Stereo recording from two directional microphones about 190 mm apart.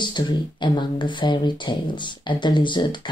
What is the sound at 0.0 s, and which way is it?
Speech, 25° left (ahead or behind).